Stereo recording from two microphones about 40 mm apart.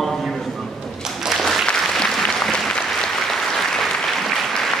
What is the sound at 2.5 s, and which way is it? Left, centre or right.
Applause, centre.